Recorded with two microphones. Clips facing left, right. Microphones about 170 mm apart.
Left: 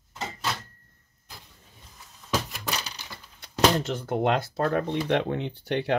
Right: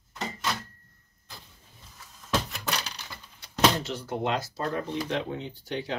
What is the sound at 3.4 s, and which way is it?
Speech, 55° left (ahead or behind).